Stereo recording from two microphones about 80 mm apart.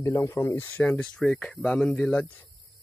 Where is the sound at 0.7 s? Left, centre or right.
Centre.